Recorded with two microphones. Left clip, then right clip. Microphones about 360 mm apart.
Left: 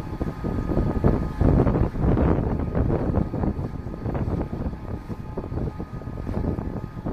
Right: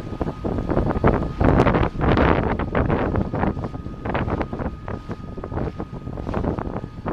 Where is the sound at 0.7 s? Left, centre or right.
Right.